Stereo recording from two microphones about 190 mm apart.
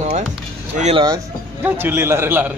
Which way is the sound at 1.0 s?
15° right (ahead or behind).